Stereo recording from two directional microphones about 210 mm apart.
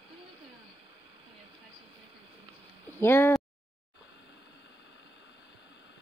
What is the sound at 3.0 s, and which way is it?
Speech, 10° left (ahead or behind).